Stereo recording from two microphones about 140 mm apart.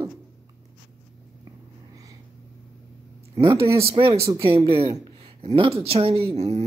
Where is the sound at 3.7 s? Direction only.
40° right (ahead or behind).